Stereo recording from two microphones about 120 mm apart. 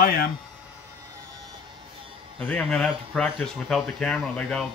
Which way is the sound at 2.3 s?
10° left (ahead or behind).